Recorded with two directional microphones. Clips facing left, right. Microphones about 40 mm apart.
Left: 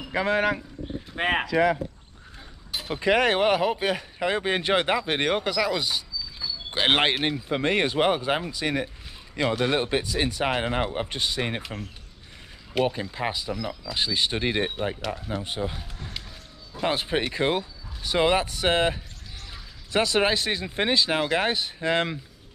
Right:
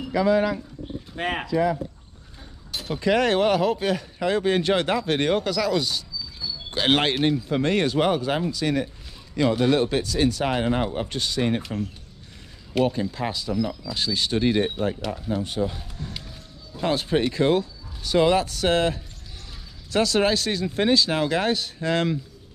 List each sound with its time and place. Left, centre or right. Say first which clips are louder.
0.1 s speech: right 3 dB; left
1.1 s speech: left 3 dB; left
1.4 s speech: right 1 dB; left
2.7 s speech: right 1 dB; centre
15.0 s speech: right 1 dB; centre
15.2 s speech: right 7 dB; centre